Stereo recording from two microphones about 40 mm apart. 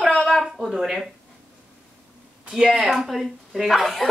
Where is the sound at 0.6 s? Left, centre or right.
Centre.